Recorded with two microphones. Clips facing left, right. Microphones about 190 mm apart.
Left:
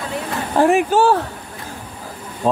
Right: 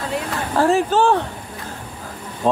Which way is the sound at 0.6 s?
15° left (ahead or behind).